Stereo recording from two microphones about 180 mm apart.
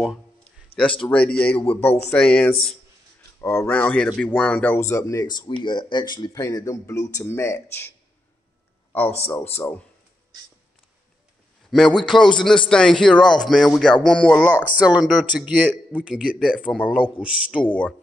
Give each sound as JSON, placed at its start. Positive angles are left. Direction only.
{"t": 0.7, "sound": "a sound", "side_deg": 35}
{"t": 1.0, "sound": "speech", "side_deg": 10}
{"t": 9.6, "sound": "speech", "side_deg": 10}
{"t": 11.7, "sound": "a man's voice", "side_deg": 0}
{"t": 14.7, "sound": "a man's voice", "side_deg": -5}
{"t": 17.6, "sound": "speech", "side_deg": 5}